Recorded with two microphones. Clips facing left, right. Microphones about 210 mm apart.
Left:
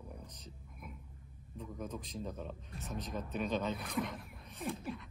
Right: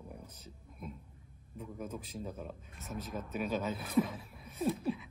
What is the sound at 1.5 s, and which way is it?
Speech, 5° right (ahead or behind).